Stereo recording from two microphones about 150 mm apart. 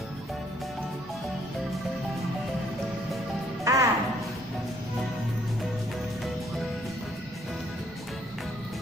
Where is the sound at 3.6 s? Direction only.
20° right (ahead or behind).